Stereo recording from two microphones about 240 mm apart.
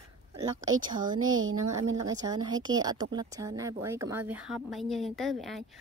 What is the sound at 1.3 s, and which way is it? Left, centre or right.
Speech, right.